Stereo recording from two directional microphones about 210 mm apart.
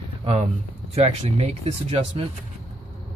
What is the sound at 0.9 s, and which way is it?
Speech, 30° right (ahead or behind).